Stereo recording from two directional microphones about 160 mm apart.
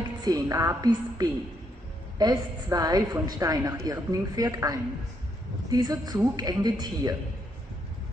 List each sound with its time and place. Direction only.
0.2 s a woman's voice: 20° right (ahead or behind)